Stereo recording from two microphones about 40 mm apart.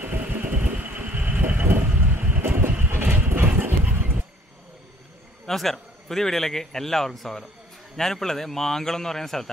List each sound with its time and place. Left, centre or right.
0.0 s vehicle: right
2.8 s vehicle: right
3.8 s vehicle: right
5.5 s a man's voice: centre